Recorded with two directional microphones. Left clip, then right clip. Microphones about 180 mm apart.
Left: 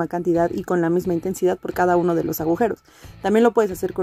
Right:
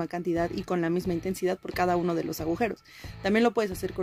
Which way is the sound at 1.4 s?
20° left (ahead or behind).